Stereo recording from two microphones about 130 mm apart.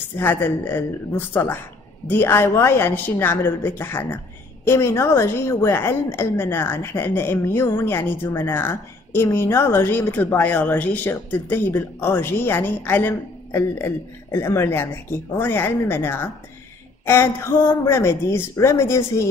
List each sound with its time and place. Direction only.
0.2 s a woman's voice: 15° left (ahead or behind)